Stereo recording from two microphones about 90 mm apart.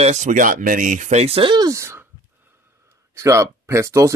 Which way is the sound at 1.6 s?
35° right (ahead or behind).